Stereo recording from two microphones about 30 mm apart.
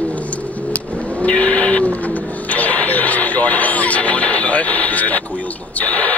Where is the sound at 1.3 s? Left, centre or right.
Left.